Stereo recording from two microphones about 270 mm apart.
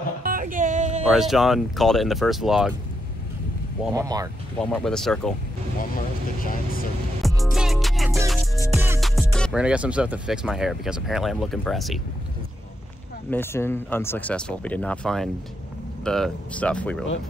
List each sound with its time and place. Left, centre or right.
0.2 s music: right
1.1 s speech: centre
3.9 s speech: centre
4.6 s speech: centre
6.4 s speech: left
7.2 s music: centre
8.7 s speech: centre
13.3 s speech: centre